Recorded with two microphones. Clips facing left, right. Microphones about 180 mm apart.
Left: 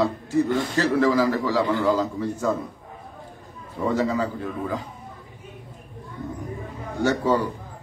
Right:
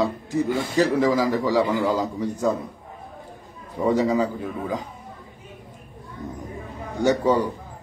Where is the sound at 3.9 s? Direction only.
15° right (ahead or behind).